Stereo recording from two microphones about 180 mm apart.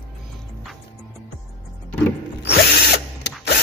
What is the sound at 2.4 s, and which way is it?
Drill, 65° left (ahead or behind).